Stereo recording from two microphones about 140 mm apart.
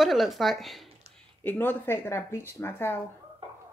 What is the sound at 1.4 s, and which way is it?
Speech, 15° left (ahead or behind).